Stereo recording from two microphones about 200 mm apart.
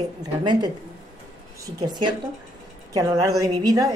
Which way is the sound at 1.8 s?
20° right (ahead or behind).